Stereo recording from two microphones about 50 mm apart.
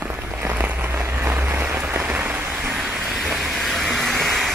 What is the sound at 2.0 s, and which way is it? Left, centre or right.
Rain on surface, right.